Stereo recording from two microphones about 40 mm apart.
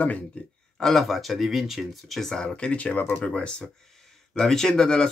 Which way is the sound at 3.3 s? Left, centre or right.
Left.